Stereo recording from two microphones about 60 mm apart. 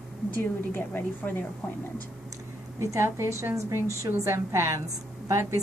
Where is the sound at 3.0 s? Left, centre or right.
Right.